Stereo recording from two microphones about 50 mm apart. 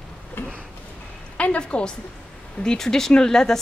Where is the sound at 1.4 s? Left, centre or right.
Left.